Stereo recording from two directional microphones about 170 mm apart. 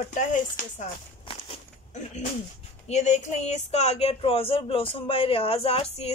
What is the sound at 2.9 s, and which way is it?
Speech, 40° left (ahead or behind).